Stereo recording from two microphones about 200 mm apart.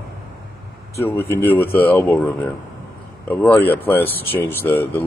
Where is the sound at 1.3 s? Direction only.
10° left (ahead or behind).